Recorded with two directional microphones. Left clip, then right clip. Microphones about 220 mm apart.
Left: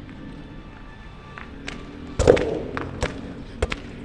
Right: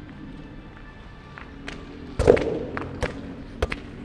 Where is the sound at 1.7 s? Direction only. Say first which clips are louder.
Left 2 dB; 15° left (ahead or behind).